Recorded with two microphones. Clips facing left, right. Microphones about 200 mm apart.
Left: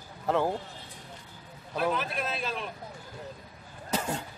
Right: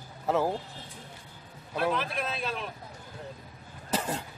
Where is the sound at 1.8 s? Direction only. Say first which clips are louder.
Even; centre (ahead or behind).